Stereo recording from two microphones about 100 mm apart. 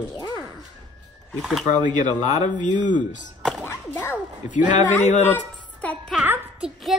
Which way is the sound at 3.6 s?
25° left (ahead or behind).